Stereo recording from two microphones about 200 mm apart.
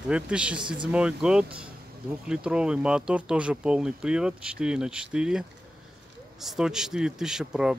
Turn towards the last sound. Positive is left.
turn(degrees=-5)  # may be behind; listen again after turning